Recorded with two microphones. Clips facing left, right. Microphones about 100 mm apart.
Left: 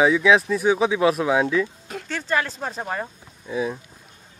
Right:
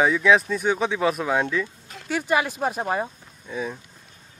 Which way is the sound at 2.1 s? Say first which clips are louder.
Right 2 dB; 15° right (ahead or behind).